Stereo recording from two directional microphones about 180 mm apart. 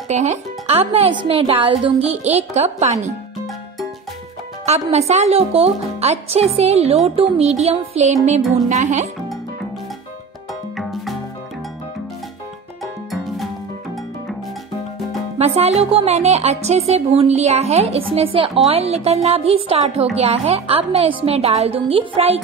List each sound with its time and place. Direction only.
0.1 s a woman's voice: 40° right (ahead or behind)
4.6 s a woman's voice: 35° right (ahead or behind)
10.8 s music: centre (ahead or behind)
12.8 s music: centre (ahead or behind)
15.3 s a woman's voice: 35° right (ahead or behind)